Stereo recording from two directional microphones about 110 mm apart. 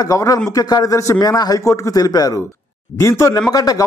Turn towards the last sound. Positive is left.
turn(degrees=35)  # may be behind; listen again after turning